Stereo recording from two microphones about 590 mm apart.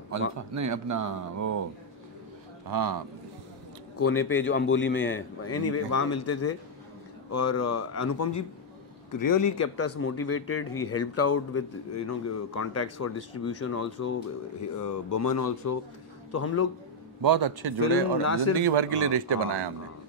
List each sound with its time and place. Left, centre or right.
0.6 s speech: right
2.6 s speech: right
4.0 s a man's voice: left
17.2 s speech: right